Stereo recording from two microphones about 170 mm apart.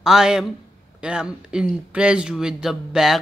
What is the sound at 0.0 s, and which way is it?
Speech, 5° right (ahead or behind).